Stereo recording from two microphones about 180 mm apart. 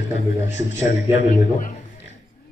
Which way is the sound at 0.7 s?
40° left (ahead or behind).